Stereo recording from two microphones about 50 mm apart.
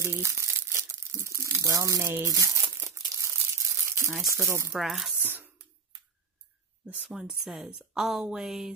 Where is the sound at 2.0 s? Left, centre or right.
Right.